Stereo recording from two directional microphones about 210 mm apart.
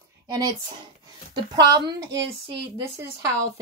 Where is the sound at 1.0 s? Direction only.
20° right (ahead or behind).